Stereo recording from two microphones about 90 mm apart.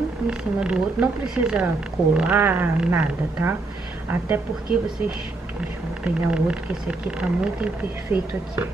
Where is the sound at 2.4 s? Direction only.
25° right (ahead or behind).